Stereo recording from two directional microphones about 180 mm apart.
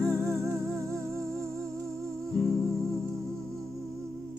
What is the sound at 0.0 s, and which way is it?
Music, centre (ahead or behind).